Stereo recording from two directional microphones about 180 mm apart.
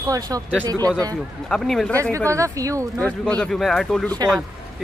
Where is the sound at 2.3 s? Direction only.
15° right (ahead or behind).